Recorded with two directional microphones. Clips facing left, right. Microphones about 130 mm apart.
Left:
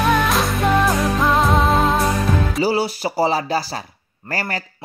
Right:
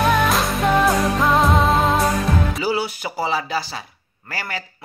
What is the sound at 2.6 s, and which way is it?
Speech, 35° left (ahead or behind).